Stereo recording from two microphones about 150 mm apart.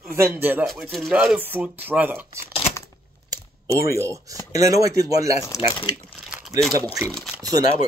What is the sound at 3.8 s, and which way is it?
Speech, 20° right (ahead or behind).